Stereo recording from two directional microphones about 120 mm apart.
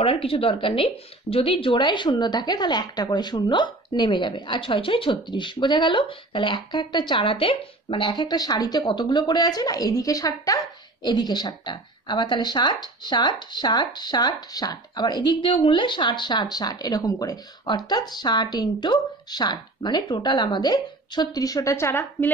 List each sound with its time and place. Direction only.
0.0 s a woman's voice: 50° left (ahead or behind); by 22.3 s 20° left (ahead or behind)